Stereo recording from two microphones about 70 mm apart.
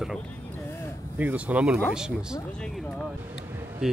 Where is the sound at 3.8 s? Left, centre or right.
Centre.